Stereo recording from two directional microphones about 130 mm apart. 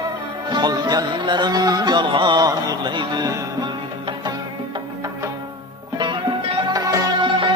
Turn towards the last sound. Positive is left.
turn(degrees=-35)  # may be behind; listen again after turning